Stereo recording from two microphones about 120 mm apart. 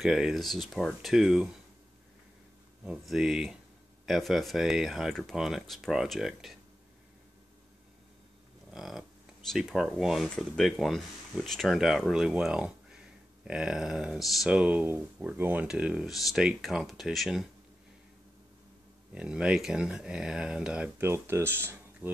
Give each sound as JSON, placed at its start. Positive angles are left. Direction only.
{"t": 0.0, "sound": "speech", "side_deg": -5}
{"t": 2.8, "sound": "speech", "side_deg": -5}
{"t": 8.7, "sound": "speech", "side_deg": 0}
{"t": 19.1, "sound": "speech", "side_deg": -10}
{"t": 21.0, "sound": "speech", "side_deg": -20}